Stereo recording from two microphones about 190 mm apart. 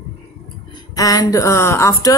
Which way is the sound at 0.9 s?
20° left (ahead or behind).